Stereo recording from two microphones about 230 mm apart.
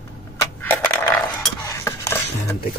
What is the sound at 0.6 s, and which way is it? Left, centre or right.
Coin, centre.